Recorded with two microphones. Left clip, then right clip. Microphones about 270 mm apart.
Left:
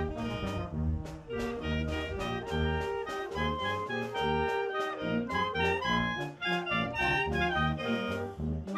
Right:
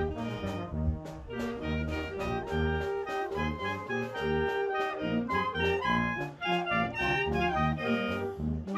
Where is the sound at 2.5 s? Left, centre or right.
Left.